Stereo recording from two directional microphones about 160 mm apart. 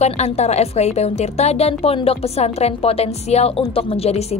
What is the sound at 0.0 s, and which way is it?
A woman's voice, 45° left (ahead or behind).